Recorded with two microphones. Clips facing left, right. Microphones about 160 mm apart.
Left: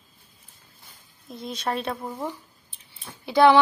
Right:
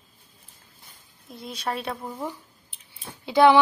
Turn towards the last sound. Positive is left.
turn(degrees=-15)  # may be behind; listen again after turning